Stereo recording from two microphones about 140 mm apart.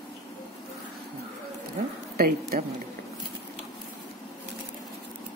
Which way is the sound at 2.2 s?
90° right.